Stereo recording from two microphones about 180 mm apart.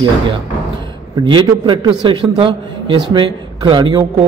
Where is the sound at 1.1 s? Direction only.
25° right (ahead or behind).